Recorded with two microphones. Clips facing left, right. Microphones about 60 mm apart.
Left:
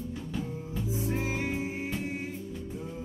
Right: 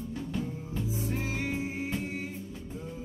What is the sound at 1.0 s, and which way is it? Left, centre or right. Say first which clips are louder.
Music: left 4 dB; left.